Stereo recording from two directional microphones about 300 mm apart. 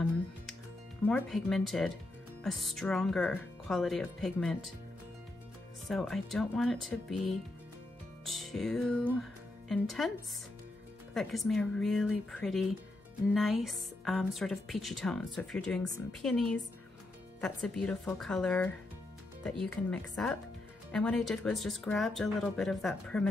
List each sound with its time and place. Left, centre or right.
1.0 s speech: centre
5.9 s speech: centre
11.1 s speech: centre